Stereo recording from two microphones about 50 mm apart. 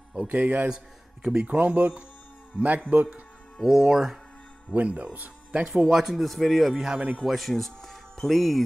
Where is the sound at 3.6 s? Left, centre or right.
Centre.